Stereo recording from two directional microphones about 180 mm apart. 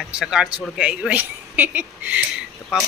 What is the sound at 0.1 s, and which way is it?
Speech, 5° right (ahead or behind).